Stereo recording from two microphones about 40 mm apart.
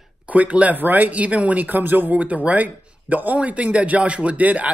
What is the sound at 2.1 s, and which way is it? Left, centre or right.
Speech, right.